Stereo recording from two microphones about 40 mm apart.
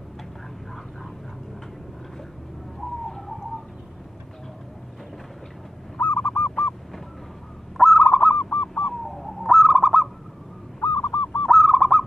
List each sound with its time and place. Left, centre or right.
5.9 s honk: left
7.8 s owl: centre
8.4 s owl: left
9.1 s bird: centre
9.5 s bird: centre
10.8 s owl: left
11.5 s bird: centre